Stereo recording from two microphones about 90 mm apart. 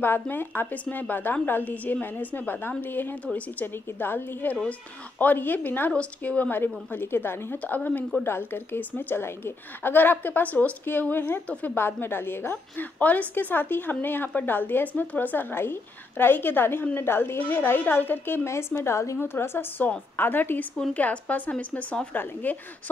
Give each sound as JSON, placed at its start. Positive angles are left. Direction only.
{"t": 0.0, "sound": "a woman's voice", "side_deg": 25}